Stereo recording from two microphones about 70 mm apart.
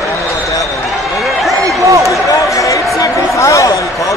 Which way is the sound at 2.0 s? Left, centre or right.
Left.